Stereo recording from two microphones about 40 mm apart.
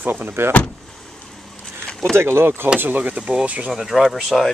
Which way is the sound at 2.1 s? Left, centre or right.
Right.